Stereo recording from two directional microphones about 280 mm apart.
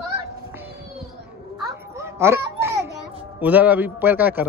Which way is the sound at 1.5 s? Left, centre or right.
Centre.